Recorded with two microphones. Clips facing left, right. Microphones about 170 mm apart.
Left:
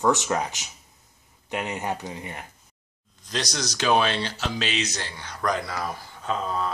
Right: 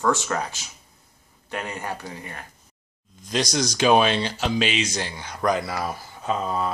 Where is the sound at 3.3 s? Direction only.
10° right (ahead or behind).